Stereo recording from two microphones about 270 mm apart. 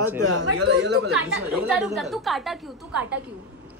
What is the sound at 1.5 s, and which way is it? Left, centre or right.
A woman's voice, centre.